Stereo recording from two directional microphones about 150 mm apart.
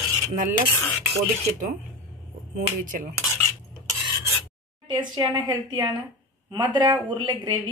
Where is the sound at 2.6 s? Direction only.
65° right (ahead or behind).